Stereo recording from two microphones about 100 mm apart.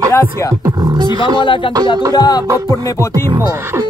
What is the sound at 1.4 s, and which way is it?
Music, 55° left (ahead or behind).